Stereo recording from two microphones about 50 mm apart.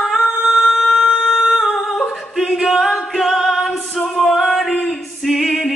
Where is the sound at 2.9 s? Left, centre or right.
Centre.